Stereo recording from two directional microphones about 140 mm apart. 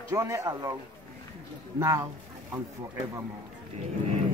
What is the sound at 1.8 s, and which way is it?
Speech, 25° right (ahead or behind).